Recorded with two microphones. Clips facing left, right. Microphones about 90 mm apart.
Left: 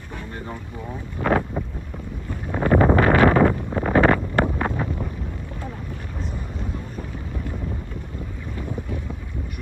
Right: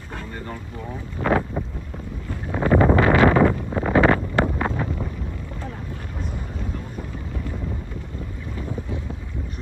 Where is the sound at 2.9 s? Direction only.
45° left (ahead or behind).